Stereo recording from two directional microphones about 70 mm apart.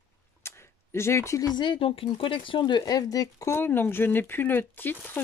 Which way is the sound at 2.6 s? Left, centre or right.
Left.